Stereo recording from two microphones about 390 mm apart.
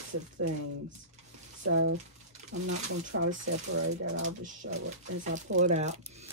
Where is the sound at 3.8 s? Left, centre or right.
Right.